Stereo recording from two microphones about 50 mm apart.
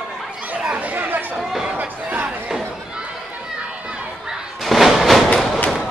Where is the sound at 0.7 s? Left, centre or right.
Right.